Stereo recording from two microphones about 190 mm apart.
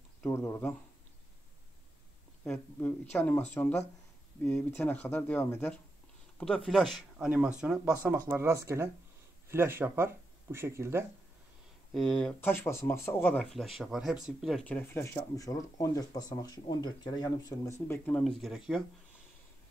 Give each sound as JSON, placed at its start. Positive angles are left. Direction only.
{"t": 0.2, "sound": "speech", "side_deg": 15}
{"t": 2.4, "sound": "speech", "side_deg": 5}
{"t": 11.9, "sound": "speech", "side_deg": 0}